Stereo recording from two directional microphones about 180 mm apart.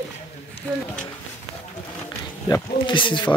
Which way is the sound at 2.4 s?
25° left (ahead or behind).